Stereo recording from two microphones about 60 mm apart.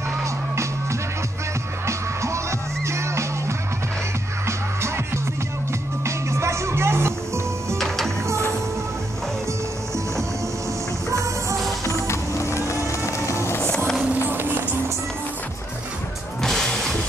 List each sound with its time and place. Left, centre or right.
1.9 s music: right
7.7 s music: centre
8.3 s music: right
11.1 s music: right
11.8 s music: left
14.1 s music: right
16.3 s music: centre